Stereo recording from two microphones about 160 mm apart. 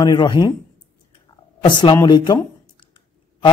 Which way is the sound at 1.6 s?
30° left (ahead or behind).